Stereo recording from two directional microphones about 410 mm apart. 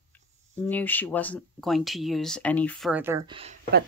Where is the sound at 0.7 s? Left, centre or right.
Centre.